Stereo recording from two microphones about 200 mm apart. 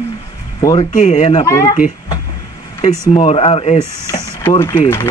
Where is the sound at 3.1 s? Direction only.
30° left (ahead or behind).